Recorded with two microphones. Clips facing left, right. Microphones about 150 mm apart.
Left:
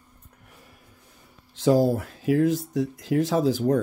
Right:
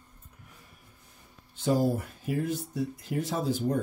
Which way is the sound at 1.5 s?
90° left.